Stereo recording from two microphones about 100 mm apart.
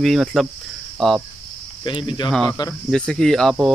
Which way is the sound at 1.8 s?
55° left (ahead or behind).